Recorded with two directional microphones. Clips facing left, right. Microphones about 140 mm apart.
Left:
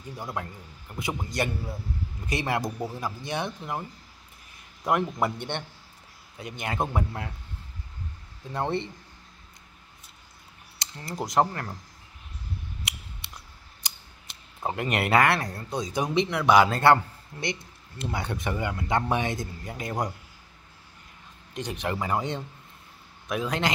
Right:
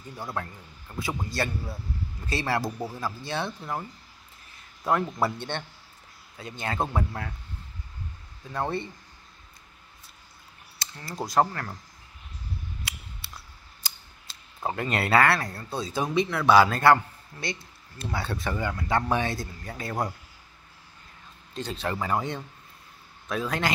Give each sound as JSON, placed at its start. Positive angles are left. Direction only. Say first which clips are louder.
{"t": 0.2, "sound": "speech", "louder": "right 1 dB", "side_deg": 15}
{"t": 4.8, "sound": "speech", "louder": "even", "side_deg": 15}
{"t": 8.5, "sound": "speech", "louder": "left 1 dB", "side_deg": 20}
{"t": 10.8, "sound": "speech", "louder": "left 1 dB", "side_deg": 20}
{"t": 12.8, "sound": "a sound", "louder": "left 1 dB", "side_deg": 20}
{"t": 13.8, "sound": "scissors", "louder": "even", "side_deg": 20}
{"t": 14.8, "sound": "speech", "louder": "even", "side_deg": 20}
{"t": 21.5, "sound": "speech", "louder": "even", "side_deg": 15}